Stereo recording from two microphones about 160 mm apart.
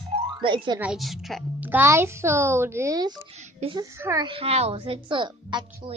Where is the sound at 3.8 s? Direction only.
20° right (ahead or behind).